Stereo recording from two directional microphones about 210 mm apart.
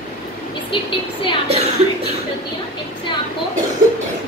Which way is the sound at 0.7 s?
25° left (ahead or behind).